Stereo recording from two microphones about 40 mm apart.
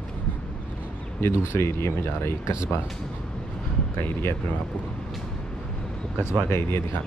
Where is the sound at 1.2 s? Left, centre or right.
Left.